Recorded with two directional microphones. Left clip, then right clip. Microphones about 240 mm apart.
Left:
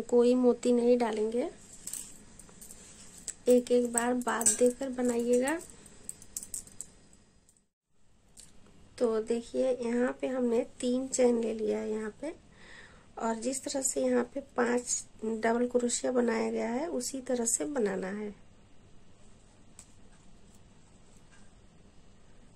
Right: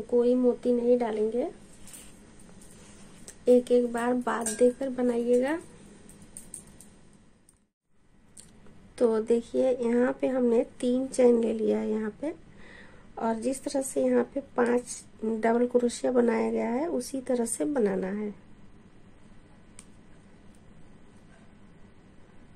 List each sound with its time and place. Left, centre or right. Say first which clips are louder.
0.1 s speech: right 1 dB; left
3.3 s speech: right 3 dB; centre
8.9 s speech: right 5 dB; centre